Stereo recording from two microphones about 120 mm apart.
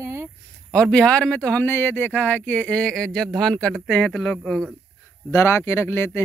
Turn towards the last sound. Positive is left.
turn(degrees=20)  # may be behind; listen again after turning